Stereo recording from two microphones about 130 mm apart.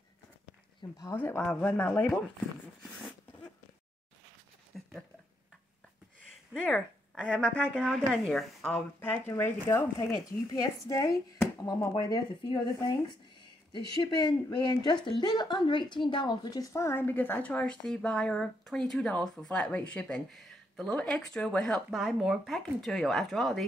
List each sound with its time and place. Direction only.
0.8 s speech: 30° left (ahead or behind)
1.1 s a woman's voice: 10° left (ahead or behind)
4.7 s a sound: centre (ahead or behind)
6.5 s speech: 5° right (ahead or behind)
7.2 s a woman's voice: 10° left (ahead or behind)
9.3 s speech: 20° left (ahead or behind)
12.7 s speech: 25° left (ahead or behind)
13.7 s a woman's voice: 35° left (ahead or behind); by 23.6 s centre (ahead or behind)